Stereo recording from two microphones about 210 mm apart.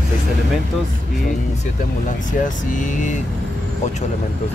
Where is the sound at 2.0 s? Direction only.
40° left (ahead or behind).